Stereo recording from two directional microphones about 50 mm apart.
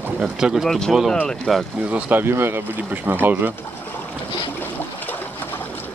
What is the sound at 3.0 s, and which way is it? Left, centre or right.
Speech, right.